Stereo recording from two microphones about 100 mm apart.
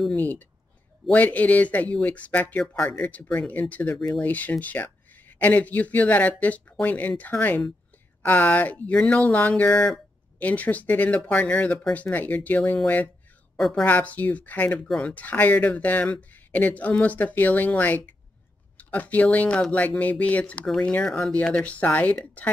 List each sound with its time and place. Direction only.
0.1 s speech: 15° left (ahead or behind)
2.6 s speech: 5° left (ahead or behind)
2.9 s speech: 15° left (ahead or behind)
13.6 s a woman's voice: centre (ahead or behind)
13.8 s speech: 15° left (ahead or behind)